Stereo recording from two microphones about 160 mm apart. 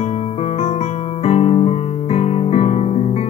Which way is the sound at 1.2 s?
40° left (ahead or behind).